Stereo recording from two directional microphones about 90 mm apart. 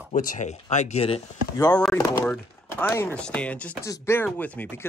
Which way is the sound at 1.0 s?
90° left.